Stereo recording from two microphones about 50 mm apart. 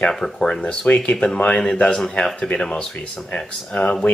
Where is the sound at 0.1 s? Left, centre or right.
Centre.